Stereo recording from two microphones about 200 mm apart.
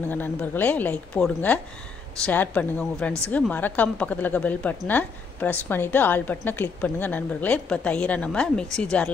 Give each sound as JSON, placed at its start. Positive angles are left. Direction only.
{"t": 0.1, "sound": "a woman's voice", "side_deg": 10}